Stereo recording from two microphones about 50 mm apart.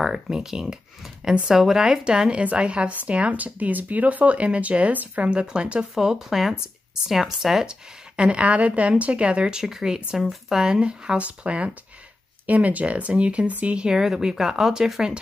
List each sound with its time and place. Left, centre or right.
0.0 s a woman's voice: centre
5.9 s speech: centre
8.2 s a woman's voice: right
13.8 s speech: centre